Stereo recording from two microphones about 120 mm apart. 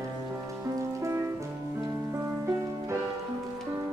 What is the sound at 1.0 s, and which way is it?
Music, 25° right (ahead or behind).